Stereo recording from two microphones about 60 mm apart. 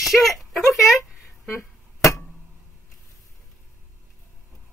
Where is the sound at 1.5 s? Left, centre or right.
Left.